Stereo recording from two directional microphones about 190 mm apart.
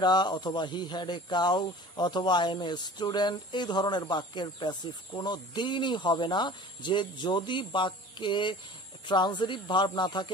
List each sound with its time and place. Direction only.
0.0 s speech: 20° left (ahead or behind)